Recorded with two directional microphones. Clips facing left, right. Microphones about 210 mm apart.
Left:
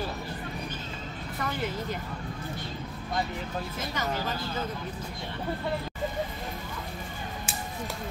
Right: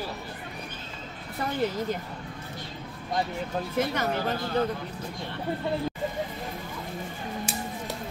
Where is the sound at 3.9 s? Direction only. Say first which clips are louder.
Right 4 dB; 60° right (ahead or behind).